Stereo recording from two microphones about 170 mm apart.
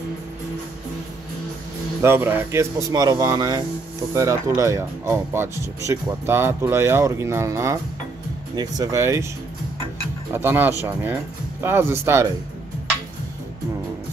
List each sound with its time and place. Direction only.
2.0 s speech: 15° right (ahead or behind)
10.3 s speech: 10° right (ahead or behind)